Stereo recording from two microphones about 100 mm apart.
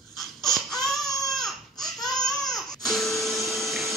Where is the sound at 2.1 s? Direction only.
5° left (ahead or behind).